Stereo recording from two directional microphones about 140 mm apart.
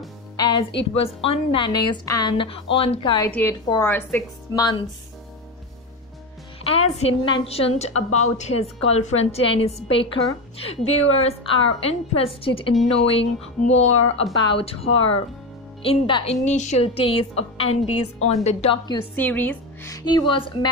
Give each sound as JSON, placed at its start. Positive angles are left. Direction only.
{"t": 0.4, "sound": "a woman's voice", "side_deg": 35}
{"t": 3.3, "sound": "speech", "side_deg": 10}
{"t": 4.6, "sound": "speech", "side_deg": 30}
{"t": 6.6, "sound": "a woman's voice", "side_deg": 45}
{"t": 16.4, "sound": "a woman's voice", "side_deg": 55}
{"t": 19.1, "sound": "a woman's voice", "side_deg": 15}
{"t": 19.9, "sound": "a woman's voice", "side_deg": 25}